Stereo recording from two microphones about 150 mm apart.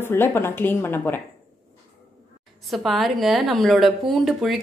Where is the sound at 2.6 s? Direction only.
Centre (ahead or behind).